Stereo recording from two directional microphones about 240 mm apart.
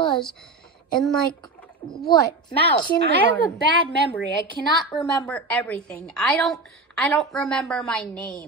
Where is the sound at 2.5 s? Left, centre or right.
Left.